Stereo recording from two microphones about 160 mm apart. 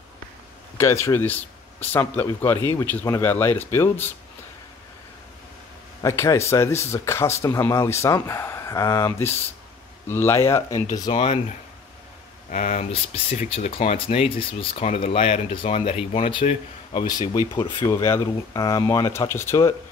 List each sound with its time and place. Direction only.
0.7 s speech: 15° left (ahead or behind)
6.0 s speech: 15° left (ahead or behind)
11.1 s speech: 35° left (ahead or behind)
12.4 s speech: 55° left (ahead or behind)
12.9 s speech: 40° left (ahead or behind)
17.8 s speech: 15° left (ahead or behind)